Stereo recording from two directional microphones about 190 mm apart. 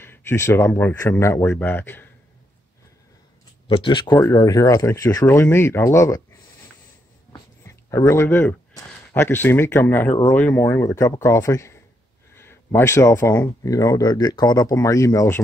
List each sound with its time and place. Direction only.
0.0 s speech: 10° left (ahead or behind)
3.6 s speech: 25° left (ahead or behind)
7.6 s speech: 15° left (ahead or behind)